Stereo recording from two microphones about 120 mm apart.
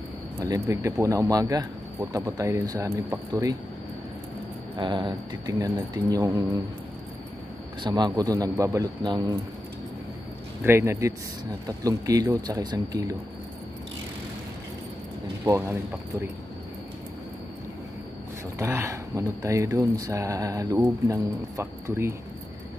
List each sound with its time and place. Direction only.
0.4 s speech: 25° right (ahead or behind)
4.7 s a man's voice: 40° right (ahead or behind)
5.5 s speech: 25° right (ahead or behind)
7.8 s a man's voice: 35° right (ahead or behind)
10.6 s speech: 20° right (ahead or behind)
15.4 s speech: 20° right (ahead or behind)
18.6 s speech: 20° right (ahead or behind)